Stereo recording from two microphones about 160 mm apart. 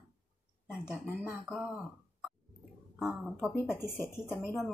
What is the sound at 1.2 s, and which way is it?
Speech, 5° right (ahead or behind).